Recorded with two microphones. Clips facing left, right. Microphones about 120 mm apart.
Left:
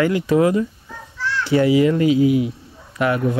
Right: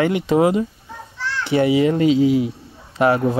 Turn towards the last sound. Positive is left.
turn(degrees=-30)  # may be behind; listen again after turning